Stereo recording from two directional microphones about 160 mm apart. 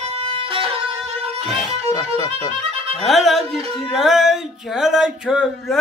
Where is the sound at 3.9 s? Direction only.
Centre (ahead or behind).